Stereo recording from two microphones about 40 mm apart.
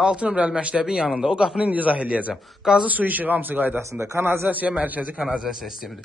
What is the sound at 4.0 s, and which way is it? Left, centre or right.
Speech, right.